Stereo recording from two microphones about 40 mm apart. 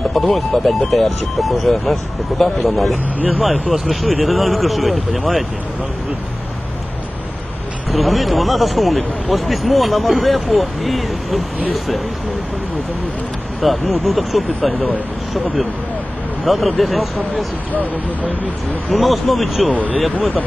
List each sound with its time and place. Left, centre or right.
0.1 s speech: centre
7.9 s speech: centre
13.6 s speech: centre
16.4 s speech: centre
18.9 s speech: centre
20.1 s speech: left